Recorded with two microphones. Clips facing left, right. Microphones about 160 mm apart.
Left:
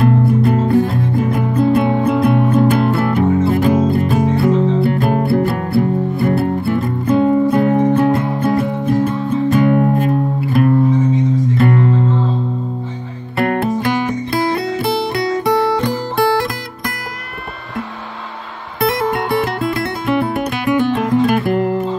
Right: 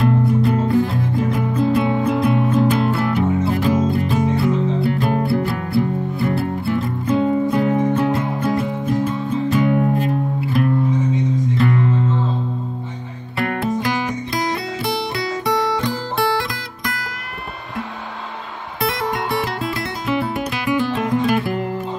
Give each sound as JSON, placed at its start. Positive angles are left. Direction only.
{"t": 0.0, "sound": "music", "side_deg": 55}
{"t": 13.4, "sound": "music", "side_deg": 50}
{"t": 18.8, "sound": "music", "side_deg": 55}